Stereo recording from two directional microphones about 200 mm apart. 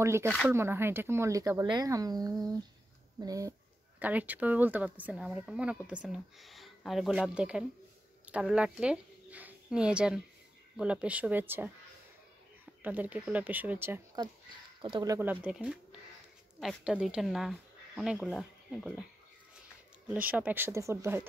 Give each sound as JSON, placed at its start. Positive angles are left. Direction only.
{"t": 0.0, "sound": "a woman's voice", "side_deg": -15}
{"t": 12.8, "sound": "speech", "side_deg": -10}
{"t": 15.1, "sound": "a woman's voice", "side_deg": -5}
{"t": 20.2, "sound": "speech", "side_deg": -10}